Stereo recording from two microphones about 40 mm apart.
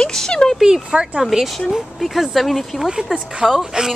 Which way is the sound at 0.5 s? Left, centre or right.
Centre.